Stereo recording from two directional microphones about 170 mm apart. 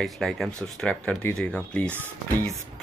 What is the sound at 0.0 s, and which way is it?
Speech, centre (ahead or behind).